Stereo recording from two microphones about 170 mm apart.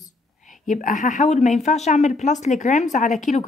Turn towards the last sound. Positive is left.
turn(degrees=45)  # may be behind; listen again after turning